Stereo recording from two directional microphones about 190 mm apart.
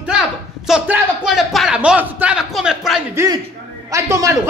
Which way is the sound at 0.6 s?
5° right (ahead or behind).